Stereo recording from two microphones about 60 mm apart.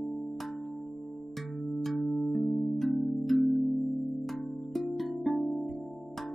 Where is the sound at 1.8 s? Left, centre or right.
Centre.